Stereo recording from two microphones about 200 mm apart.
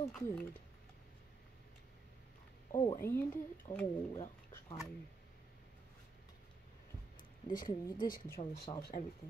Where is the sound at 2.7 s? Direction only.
20° left (ahead or behind).